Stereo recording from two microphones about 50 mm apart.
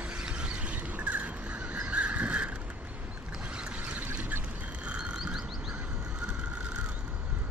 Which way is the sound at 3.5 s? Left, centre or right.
Right.